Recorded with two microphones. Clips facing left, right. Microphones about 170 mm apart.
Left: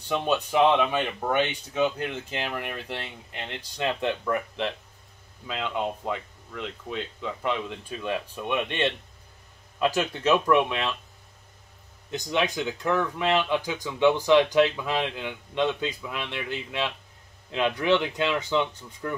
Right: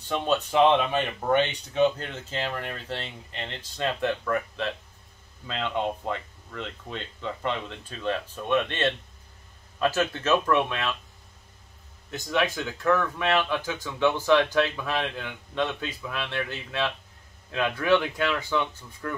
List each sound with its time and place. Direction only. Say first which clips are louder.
0.1 s speech: even; 15° left (ahead or behind)
12.1 s speech: even; 20° left (ahead or behind)